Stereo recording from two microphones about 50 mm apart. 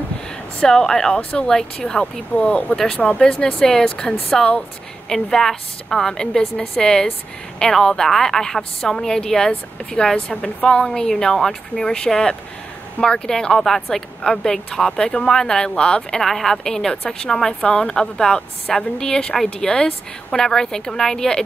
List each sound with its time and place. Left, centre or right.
0.6 s a woman's voice: centre
2.3 s speech: left
2.7 s a woman's voice: centre
3.0 s speech: left
3.3 s a woman's voice: centre
16.2 s a woman's voice: centre